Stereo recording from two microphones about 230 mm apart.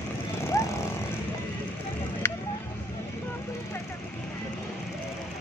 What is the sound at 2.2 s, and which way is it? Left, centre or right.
Vehicle, centre.